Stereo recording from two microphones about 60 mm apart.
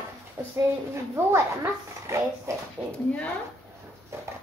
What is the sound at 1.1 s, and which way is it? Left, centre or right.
A child's voice, right.